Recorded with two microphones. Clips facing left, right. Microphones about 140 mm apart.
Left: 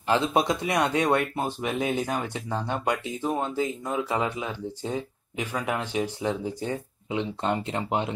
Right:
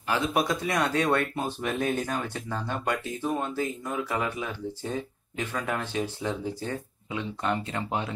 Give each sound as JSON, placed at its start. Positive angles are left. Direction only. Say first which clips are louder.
{"t": 0.1, "sound": "speech", "louder": "left 3 dB", "side_deg": 25}